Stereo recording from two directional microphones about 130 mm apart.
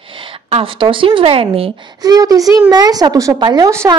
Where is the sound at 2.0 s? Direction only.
30° right (ahead or behind).